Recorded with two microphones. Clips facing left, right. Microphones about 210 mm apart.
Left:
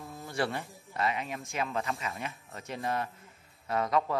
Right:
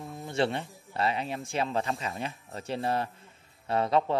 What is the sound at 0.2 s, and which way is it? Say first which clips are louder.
Speech: right 4 dB; 25° right (ahead or behind).